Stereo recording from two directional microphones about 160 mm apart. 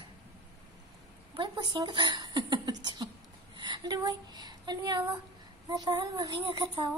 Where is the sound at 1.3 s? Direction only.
30° right (ahead or behind).